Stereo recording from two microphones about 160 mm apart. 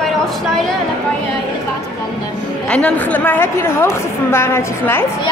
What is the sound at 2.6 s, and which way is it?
A woman's voice, 10° left (ahead or behind).